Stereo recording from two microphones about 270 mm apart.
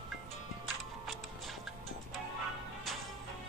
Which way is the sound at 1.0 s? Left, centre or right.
Centre.